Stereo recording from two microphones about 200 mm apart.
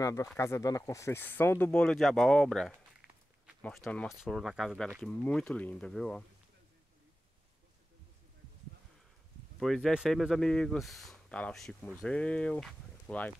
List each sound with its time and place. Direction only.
0.0 s speech: 15° left (ahead or behind)
9.6 s speech: centre (ahead or behind)